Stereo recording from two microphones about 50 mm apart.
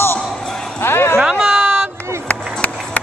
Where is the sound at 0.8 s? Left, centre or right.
Left.